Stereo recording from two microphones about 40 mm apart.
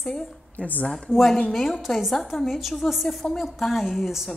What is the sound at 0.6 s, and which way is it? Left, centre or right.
Speech, left.